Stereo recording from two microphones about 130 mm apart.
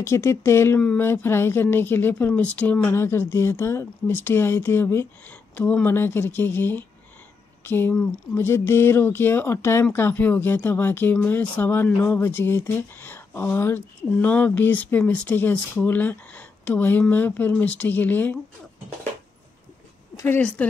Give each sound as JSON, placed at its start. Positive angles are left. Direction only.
{"t": 0.0, "sound": "speech", "side_deg": 20}
{"t": 7.9, "sound": "speech", "side_deg": 5}
{"t": 8.4, "sound": "speech", "side_deg": 20}
{"t": 20.3, "sound": "speech", "side_deg": 10}